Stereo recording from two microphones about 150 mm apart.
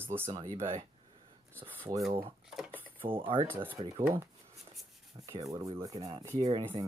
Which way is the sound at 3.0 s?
35° right (ahead or behind).